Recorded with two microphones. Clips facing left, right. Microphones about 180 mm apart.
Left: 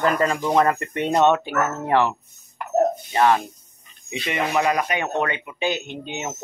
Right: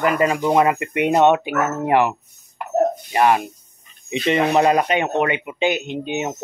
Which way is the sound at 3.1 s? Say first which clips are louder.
Right 2 dB; 15° right (ahead or behind).